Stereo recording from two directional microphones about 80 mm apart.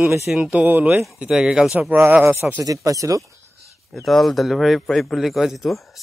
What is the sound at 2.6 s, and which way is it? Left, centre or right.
Speech, right.